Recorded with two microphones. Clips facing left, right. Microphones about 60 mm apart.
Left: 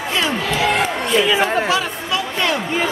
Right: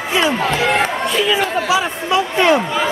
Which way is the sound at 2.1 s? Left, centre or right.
Right.